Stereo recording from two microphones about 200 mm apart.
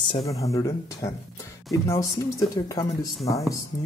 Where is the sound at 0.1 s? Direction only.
15° left (ahead or behind).